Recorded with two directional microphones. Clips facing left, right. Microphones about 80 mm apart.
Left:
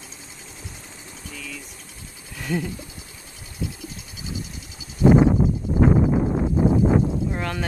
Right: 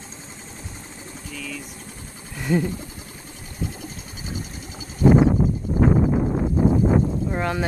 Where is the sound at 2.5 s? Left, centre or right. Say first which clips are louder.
Right 5 dB; centre.